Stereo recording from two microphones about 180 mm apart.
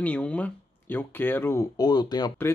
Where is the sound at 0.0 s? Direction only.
5° left (ahead or behind).